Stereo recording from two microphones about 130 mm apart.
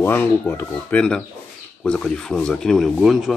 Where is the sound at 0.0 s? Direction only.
15° left (ahead or behind).